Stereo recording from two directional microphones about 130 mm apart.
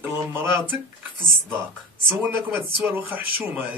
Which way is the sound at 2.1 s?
15° right (ahead or behind).